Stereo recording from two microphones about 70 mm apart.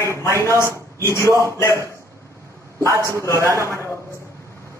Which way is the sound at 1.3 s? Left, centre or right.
Right.